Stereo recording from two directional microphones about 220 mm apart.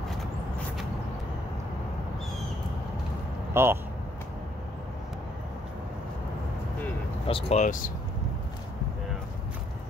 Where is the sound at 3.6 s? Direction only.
10° right (ahead or behind).